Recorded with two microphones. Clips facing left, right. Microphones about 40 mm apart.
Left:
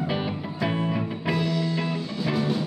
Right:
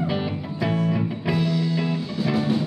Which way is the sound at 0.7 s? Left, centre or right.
Left.